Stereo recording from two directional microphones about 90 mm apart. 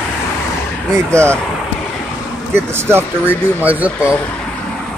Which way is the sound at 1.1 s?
30° right (ahead or behind).